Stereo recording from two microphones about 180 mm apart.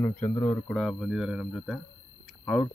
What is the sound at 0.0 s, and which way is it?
Speech, 10° left (ahead or behind).